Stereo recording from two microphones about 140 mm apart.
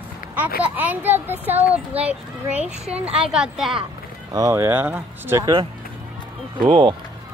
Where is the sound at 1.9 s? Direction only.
45° right (ahead or behind).